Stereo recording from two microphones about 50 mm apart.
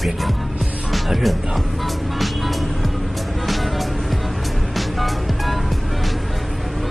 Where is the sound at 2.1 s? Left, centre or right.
Centre.